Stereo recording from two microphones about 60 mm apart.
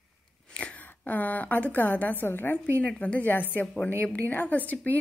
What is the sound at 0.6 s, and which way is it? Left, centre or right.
A woman's voice, left.